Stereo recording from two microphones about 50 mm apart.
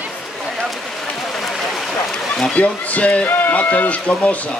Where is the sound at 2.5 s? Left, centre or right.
Left.